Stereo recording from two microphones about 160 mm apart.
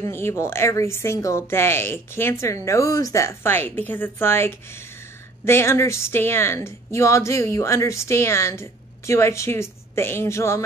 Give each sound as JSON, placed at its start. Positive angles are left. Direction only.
{"t": 0.1, "sound": "speech", "side_deg": 15}